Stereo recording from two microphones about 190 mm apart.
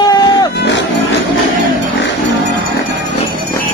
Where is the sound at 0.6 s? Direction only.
65° left (ahead or behind).